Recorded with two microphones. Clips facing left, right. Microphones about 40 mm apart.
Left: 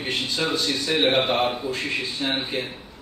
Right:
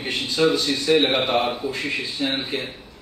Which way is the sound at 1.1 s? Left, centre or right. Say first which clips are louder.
Even; centre.